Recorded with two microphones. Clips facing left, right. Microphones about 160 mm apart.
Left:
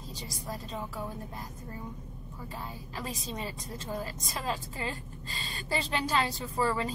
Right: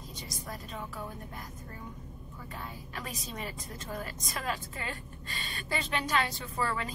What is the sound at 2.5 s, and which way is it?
A woman's voice, 30° left (ahead or behind).